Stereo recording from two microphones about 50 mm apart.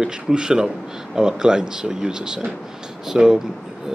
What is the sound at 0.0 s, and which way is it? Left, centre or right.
A man's voice, centre.